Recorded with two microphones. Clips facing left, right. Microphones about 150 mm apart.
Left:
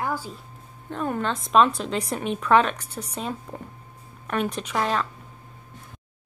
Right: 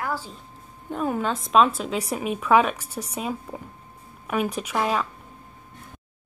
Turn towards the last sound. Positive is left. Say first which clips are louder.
# right 1 dB
turn(degrees=-5)  # may be behind; listen again after turning